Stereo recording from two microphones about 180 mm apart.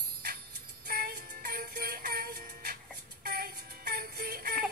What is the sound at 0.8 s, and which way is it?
Music, 55° right (ahead or behind).